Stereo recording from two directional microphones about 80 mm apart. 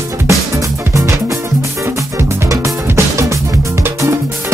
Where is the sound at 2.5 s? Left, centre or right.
Right.